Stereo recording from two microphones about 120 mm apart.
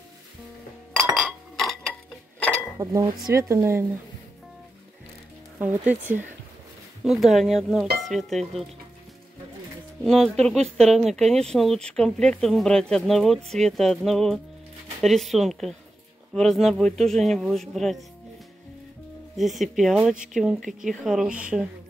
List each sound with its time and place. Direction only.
1.1 s glass: centre (ahead or behind)
2.8 s speech: 30° right (ahead or behind)
5.6 s speech: 15° right (ahead or behind)
7.1 s speech: centre (ahead or behind)
10.0 s speech: 5° left (ahead or behind)
19.3 s speech: centre (ahead or behind)